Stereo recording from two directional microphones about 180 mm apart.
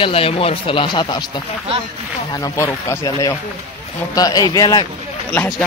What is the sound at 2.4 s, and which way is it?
Speech, 15° left (ahead or behind).